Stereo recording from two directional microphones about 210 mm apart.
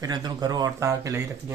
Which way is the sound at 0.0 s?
20° right (ahead or behind).